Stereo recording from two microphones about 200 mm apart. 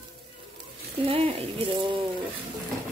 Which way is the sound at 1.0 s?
30° right (ahead or behind).